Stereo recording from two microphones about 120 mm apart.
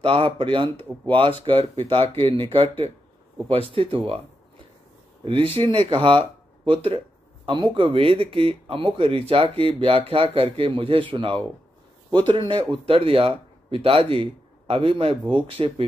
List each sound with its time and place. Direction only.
0.0 s speech: 50° right (ahead or behind)
0.7 s speech: 15° left (ahead or behind)
1.4 s speech: 45° right (ahead or behind)
3.7 s speech: 50° right (ahead or behind)
5.2 s speech: 50° right (ahead or behind)